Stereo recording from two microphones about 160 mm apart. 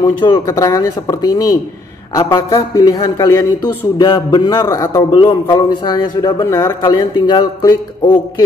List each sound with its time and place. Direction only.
0.0 s a man's voice: 25° left (ahead or behind)